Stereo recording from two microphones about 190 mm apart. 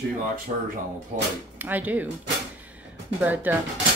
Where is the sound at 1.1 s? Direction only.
45° right (ahead or behind).